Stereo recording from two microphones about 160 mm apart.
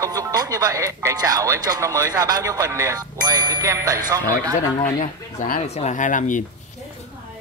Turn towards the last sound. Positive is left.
turn(degrees=55)  # may be behind; listen again after turning